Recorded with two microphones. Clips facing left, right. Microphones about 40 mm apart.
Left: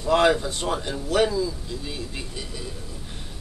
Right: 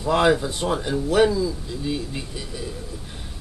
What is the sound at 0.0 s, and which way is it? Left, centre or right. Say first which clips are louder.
Speech: right 1 dB; centre.